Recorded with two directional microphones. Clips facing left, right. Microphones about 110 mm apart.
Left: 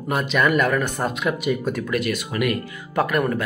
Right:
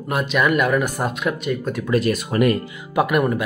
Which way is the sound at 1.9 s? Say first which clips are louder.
Right 4 dB; 40° right (ahead or behind).